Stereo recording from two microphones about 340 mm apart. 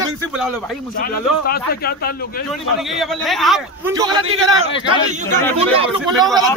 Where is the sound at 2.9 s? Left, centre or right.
Centre.